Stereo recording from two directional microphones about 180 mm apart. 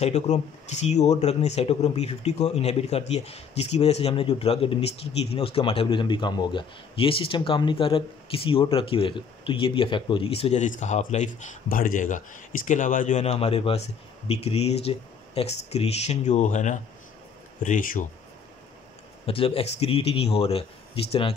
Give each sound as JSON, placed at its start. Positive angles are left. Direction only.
{"t": 0.0, "sound": "speech", "side_deg": 40}
{"t": 19.2, "sound": "speech", "side_deg": 30}